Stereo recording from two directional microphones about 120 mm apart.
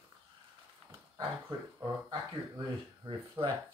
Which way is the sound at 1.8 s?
35° right (ahead or behind).